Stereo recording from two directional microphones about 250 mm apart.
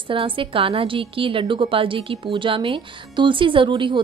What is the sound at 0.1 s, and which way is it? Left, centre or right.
A woman's voice, right.